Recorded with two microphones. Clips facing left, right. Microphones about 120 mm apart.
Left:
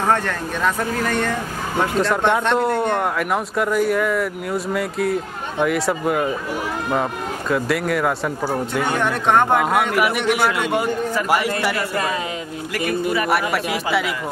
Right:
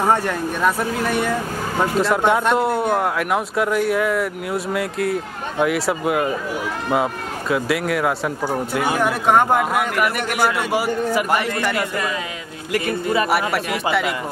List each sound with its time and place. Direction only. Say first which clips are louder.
0.0 s speech: right 1 dB; 10° right (ahead or behind)
11.2 s speech: left 1 dB; 10° left (ahead or behind)
13.3 s speech: even; centre (ahead or behind)